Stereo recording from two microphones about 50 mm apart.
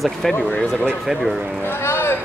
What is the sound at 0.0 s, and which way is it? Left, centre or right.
Speech, centre.